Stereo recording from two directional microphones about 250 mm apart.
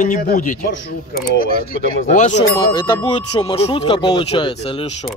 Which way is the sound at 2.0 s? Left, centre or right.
Left.